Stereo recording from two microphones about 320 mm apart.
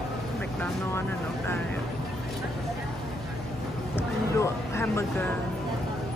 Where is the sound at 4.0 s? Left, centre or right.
Centre.